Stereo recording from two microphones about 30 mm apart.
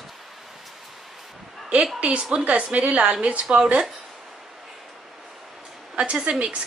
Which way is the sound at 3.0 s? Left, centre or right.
Right.